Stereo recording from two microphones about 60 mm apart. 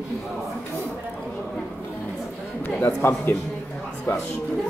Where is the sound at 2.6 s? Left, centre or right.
Left.